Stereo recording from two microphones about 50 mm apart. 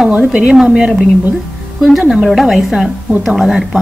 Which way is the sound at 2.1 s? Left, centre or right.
Centre.